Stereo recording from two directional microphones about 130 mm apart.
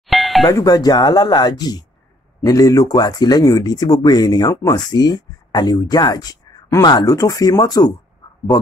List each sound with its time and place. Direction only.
0.1 s ding: centre (ahead or behind)
0.5 s speech: 30° left (ahead or behind)